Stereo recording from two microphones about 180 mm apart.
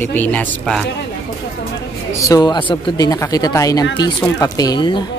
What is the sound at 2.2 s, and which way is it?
Speech, 20° left (ahead or behind).